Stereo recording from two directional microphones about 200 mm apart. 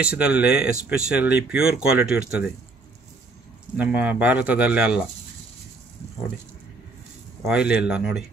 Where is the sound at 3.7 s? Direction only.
5° right (ahead or behind).